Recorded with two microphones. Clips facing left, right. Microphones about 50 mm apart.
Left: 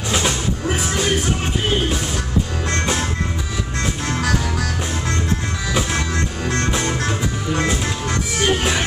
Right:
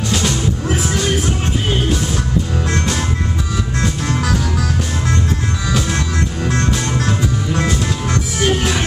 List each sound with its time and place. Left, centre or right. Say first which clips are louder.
0.1 s music: even; centre
3.8 s music: right 1 dB; centre
5.9 s music: right 2 dB; centre